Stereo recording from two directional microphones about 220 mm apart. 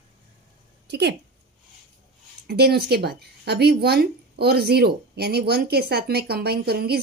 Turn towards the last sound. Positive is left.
turn(degrees=-45)  # may be behind; listen again after turning